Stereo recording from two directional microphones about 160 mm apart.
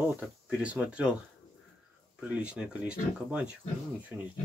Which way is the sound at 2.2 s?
5° right (ahead or behind).